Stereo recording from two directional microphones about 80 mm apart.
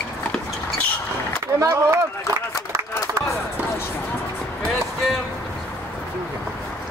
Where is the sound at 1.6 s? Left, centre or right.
Right.